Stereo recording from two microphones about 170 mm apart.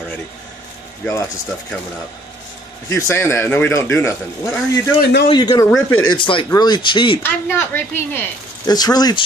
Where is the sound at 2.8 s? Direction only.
15° left (ahead or behind).